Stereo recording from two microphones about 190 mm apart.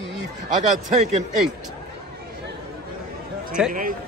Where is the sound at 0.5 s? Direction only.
40° right (ahead or behind).